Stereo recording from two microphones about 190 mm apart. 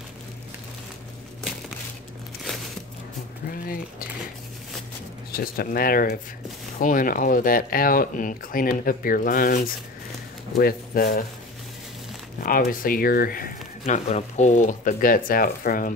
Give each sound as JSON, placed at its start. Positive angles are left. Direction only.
{"t": 5.3, "sound": "speech", "side_deg": 50}
{"t": 12.4, "sound": "speech", "side_deg": 50}